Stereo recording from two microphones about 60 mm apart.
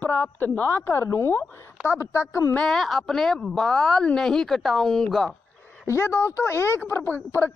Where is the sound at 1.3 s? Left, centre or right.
Left.